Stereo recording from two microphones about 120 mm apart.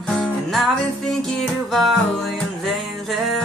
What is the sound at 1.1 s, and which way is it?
Music, centre (ahead or behind).